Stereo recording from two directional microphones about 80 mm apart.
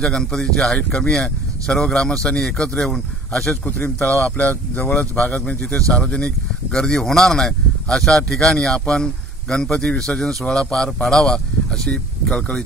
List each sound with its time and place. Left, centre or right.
0.0 s a man's voice: centre
3.6 s a man's voice: left